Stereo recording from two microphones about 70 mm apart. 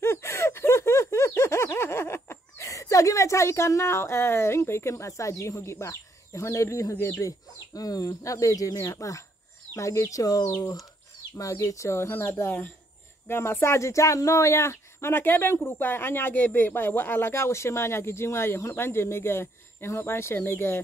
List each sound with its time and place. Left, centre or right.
0.0 s a sound: left
2.7 s a woman's voice: left
7.7 s a woman's voice: left